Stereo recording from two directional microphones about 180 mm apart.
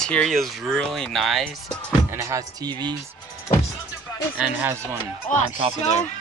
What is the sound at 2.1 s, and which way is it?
Speech, 15° right (ahead or behind).